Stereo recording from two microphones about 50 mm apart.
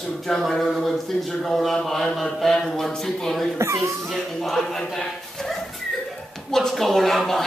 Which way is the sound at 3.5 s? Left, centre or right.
Right.